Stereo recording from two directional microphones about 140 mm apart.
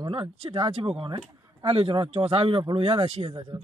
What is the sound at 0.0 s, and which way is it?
Speech, 35° right (ahead or behind).